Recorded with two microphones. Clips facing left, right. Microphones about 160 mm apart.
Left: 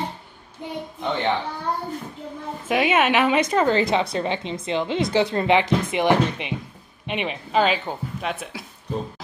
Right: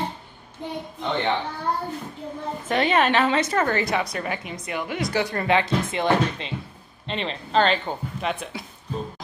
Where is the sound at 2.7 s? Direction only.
10° left (ahead or behind).